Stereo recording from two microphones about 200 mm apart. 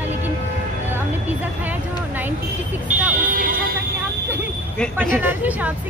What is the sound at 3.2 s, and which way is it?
Vehicle, 45° right (ahead or behind).